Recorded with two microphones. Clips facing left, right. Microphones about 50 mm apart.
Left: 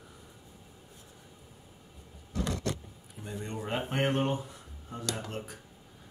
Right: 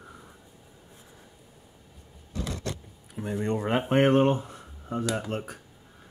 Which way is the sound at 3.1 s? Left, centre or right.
Right.